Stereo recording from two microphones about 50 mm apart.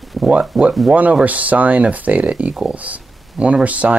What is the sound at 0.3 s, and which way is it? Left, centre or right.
Speech, right.